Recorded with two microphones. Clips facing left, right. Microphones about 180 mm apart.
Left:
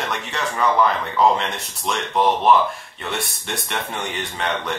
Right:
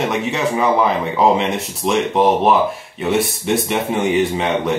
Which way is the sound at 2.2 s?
40° right (ahead or behind).